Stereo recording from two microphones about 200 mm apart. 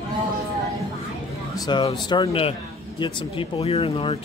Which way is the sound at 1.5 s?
20° left (ahead or behind).